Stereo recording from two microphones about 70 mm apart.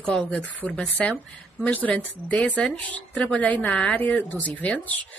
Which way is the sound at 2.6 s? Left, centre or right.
Centre.